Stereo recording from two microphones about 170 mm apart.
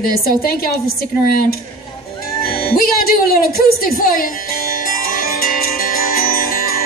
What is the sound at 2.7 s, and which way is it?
Speech, 60° left (ahead or behind).